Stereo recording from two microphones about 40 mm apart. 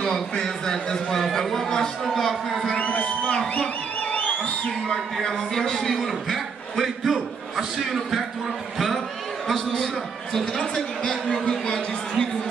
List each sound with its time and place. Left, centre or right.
0.0 s a man's voice: centre
2.8 s a sound: left
4.6 s a man's voice: centre
9.5 s a man's voice: centre
10.4 s a man's voice: left